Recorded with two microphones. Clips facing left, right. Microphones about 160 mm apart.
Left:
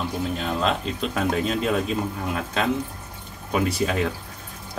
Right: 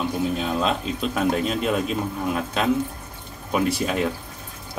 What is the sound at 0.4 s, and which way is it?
Speech, 5° right (ahead or behind).